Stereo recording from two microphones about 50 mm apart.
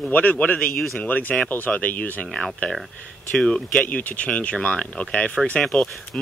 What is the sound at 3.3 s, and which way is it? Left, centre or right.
Speech, centre.